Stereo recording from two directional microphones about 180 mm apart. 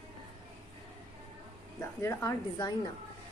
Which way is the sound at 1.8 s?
15° left (ahead or behind).